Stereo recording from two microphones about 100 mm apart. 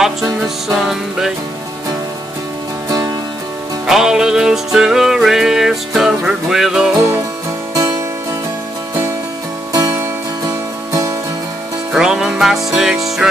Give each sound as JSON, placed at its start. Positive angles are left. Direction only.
{"t": 0.0, "sound": "music", "side_deg": -5}
{"t": 3.8, "sound": "music", "side_deg": -5}
{"t": 7.7, "sound": "music", "side_deg": -40}
{"t": 9.7, "sound": "music", "side_deg": -35}
{"t": 11.9, "sound": "music", "side_deg": -5}